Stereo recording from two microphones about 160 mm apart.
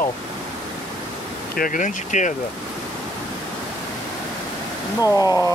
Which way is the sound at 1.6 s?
55° left (ahead or behind).